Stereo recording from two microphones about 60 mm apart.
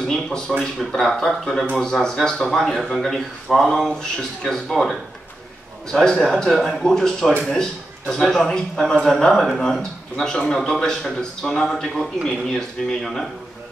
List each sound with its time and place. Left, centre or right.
0.0 s speech: centre